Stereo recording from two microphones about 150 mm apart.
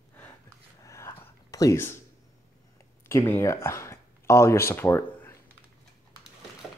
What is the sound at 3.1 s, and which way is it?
Speech, 20° left (ahead or behind).